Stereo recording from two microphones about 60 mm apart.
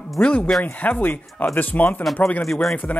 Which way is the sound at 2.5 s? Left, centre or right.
Centre.